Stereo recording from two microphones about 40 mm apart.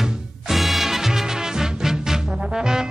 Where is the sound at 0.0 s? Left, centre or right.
Centre.